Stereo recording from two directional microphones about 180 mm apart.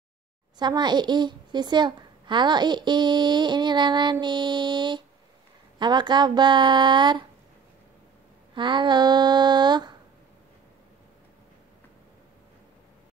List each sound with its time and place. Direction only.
0.6 s a woman's voice: 25° right (ahead or behind)
8.5 s a woman's voice: 25° right (ahead or behind)